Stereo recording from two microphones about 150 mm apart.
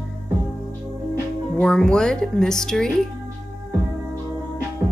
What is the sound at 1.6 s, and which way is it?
Speech, 5° left (ahead or behind).